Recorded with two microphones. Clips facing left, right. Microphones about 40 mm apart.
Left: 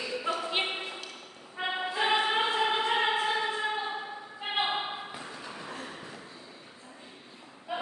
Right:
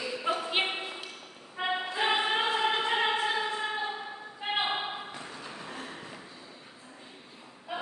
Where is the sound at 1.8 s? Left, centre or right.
Centre.